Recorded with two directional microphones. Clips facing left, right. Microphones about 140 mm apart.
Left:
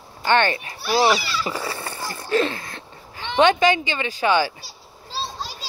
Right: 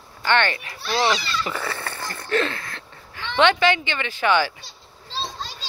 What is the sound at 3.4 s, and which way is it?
Speech, 40° left (ahead or behind).